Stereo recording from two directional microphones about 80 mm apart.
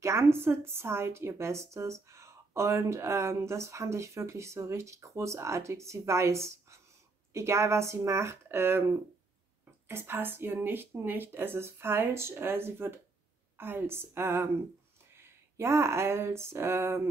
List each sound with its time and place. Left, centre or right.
0.0 s speech: right
9.8 s speech: right